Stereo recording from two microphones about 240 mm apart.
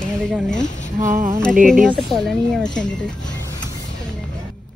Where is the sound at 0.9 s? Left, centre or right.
Right.